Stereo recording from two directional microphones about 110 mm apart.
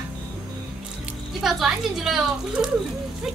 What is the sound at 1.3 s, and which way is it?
Speech, 5° right (ahead or behind).